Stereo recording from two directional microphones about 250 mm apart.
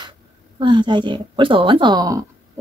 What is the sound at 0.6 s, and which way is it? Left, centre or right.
Speech, centre.